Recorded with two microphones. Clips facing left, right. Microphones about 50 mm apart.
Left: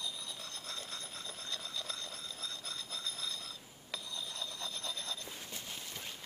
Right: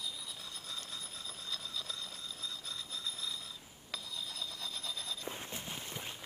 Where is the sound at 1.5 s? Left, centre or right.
Centre.